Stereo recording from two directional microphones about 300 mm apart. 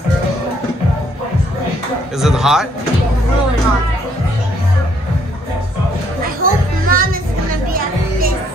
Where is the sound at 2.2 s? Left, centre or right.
Centre.